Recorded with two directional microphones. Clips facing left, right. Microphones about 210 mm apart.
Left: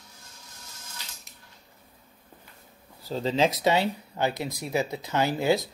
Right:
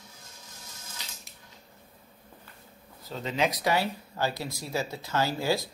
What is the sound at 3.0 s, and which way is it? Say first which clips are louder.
Speech: left 4 dB; 30° left (ahead or behind).